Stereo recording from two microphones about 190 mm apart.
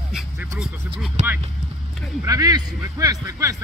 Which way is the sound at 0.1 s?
5° right (ahead or behind).